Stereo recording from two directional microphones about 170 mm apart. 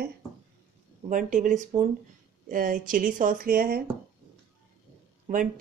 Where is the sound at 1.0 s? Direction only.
50° right (ahead or behind).